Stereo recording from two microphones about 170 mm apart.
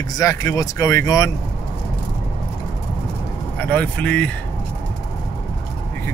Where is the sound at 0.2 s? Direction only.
20° left (ahead or behind).